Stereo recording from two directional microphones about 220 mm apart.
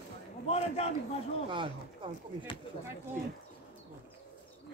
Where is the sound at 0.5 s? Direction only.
30° left (ahead or behind).